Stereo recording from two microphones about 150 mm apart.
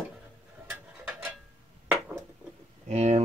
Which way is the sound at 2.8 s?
45° right (ahead or behind).